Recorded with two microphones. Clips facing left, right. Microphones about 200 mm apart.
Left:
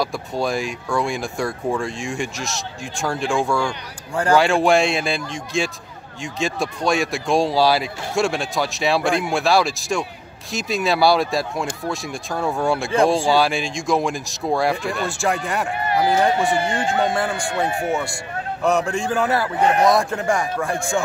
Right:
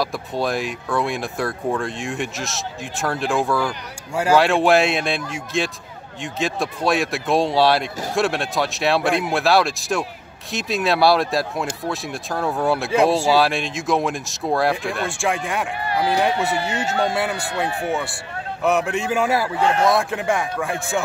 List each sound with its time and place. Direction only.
0.0 s speech: centre (ahead or behind)
15.8 s speech: 20° left (ahead or behind)
17.1 s speech: 5° right (ahead or behind)
17.6 s speech: 20° left (ahead or behind)
18.6 s speech: 5° right (ahead or behind)
19.6 s speech: 20° left (ahead or behind)
19.9 s speech: centre (ahead or behind)